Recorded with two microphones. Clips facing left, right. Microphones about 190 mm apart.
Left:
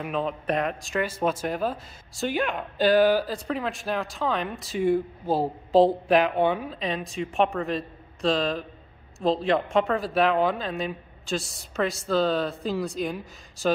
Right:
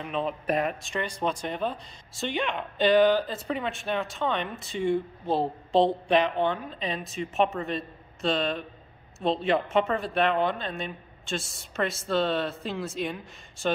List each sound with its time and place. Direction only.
0.0 s speech: centre (ahead or behind)